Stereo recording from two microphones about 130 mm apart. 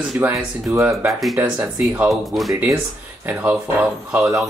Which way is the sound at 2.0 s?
Centre (ahead or behind).